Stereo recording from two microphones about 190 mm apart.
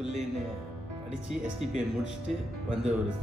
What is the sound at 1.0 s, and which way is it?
A man's voice, 5° right (ahead or behind).